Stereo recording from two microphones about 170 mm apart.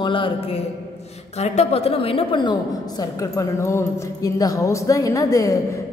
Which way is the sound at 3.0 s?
20° left (ahead or behind).